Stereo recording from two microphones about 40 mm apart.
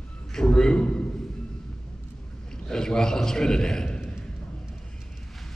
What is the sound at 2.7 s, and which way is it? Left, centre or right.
A man's voice, centre.